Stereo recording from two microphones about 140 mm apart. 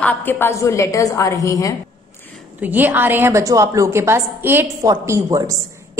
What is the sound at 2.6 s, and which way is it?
A woman's voice, 10° right (ahead or behind).